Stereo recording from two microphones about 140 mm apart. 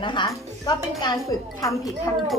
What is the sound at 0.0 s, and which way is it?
Speech, 35° left (ahead or behind).